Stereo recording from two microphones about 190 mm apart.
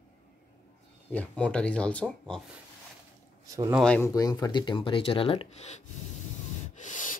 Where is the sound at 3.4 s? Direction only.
20° right (ahead or behind).